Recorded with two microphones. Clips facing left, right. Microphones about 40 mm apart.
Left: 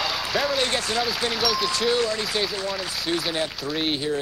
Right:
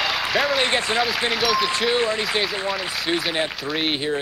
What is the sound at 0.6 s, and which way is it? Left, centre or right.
Speech, right.